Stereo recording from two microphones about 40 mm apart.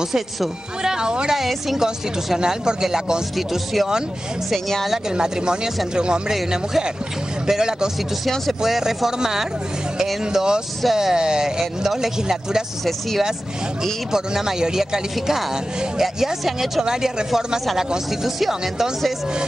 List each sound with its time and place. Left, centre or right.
0.0 s speech: centre
1.3 s a woman's voice: centre
5.1 s speech: centre
14.1 s speech: centre